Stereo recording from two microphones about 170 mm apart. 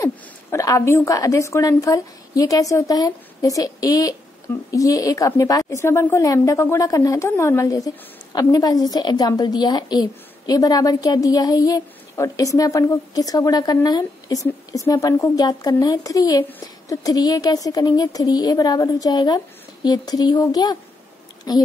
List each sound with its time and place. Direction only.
0.0 s a woman's voice: 20° left (ahead or behind)
16.4 s a woman's voice: 10° left (ahead or behind)
17.0 s a woman's voice: 20° left (ahead or behind)